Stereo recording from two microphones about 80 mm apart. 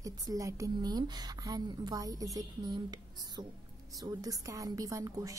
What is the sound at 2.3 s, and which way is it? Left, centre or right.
A woman's voice, right.